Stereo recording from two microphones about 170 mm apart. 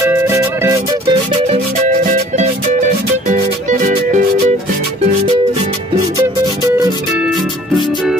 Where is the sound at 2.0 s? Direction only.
50° right (ahead or behind).